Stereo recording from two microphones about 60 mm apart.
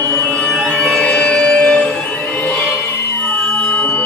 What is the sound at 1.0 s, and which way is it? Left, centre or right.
Music, left.